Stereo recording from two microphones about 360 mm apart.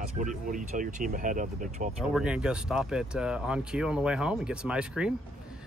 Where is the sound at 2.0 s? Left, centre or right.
Centre.